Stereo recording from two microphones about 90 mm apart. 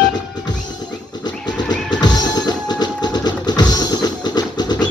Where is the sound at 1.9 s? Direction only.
50° left (ahead or behind).